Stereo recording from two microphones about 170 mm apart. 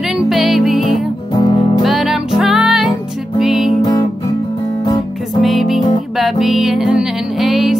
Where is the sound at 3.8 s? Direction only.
25° left (ahead or behind).